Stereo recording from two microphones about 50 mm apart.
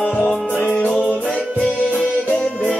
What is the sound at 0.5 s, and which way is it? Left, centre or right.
Music, left.